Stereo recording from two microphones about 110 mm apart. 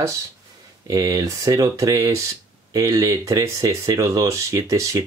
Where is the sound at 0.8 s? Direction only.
35° right (ahead or behind).